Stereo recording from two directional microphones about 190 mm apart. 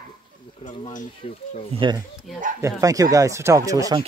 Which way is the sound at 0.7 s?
30° left (ahead or behind).